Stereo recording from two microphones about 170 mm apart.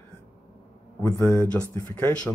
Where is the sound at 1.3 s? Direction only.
10° left (ahead or behind).